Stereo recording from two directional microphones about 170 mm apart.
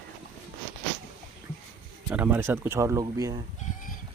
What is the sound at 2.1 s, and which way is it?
Speech, 10° right (ahead or behind).